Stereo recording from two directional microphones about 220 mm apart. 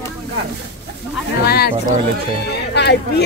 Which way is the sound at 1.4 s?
45° left (ahead or behind).